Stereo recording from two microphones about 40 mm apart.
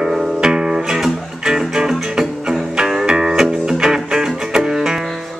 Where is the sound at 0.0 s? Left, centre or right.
Centre.